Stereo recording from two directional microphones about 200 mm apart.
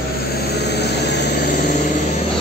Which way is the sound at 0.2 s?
50° left (ahead or behind).